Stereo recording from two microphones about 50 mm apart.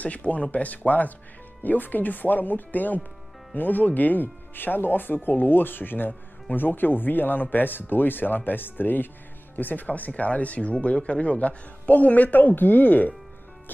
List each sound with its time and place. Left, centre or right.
0.0 s speech: left